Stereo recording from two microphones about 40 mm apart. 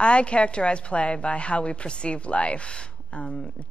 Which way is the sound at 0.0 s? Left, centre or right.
Left.